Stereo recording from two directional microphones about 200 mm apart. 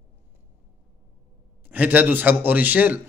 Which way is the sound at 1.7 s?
10° right (ahead or behind).